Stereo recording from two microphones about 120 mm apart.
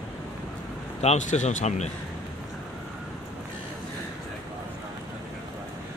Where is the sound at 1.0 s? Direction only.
75° left (ahead or behind).